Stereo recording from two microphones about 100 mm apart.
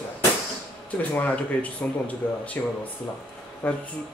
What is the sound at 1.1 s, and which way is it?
Speech, 15° left (ahead or behind).